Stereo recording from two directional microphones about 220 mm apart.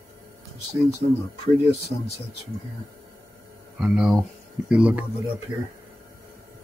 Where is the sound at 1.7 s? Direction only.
30° left (ahead or behind).